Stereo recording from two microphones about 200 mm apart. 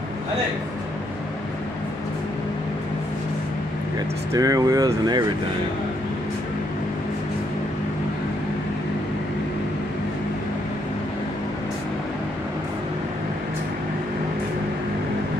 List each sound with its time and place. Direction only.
4.3 s speech: 15° right (ahead or behind)